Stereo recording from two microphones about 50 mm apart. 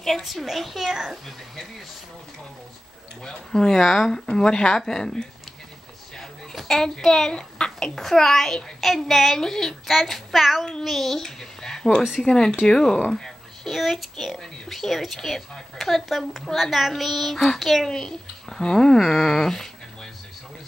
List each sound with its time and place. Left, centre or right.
0.0 s speech: centre
3.3 s a child's voice: centre
4.3 s a child's voice: centre
6.7 s a child's voice: centre